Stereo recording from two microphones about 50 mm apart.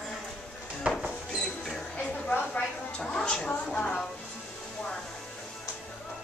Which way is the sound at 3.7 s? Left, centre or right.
Left.